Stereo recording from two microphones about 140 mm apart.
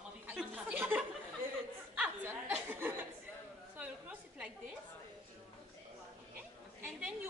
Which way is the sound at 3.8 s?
10° right (ahead or behind).